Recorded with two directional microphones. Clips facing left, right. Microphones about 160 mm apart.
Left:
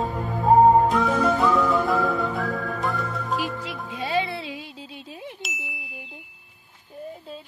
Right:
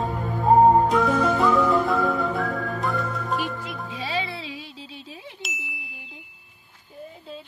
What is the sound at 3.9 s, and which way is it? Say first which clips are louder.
Music: left 5 dB; 50° left (ahead or behind).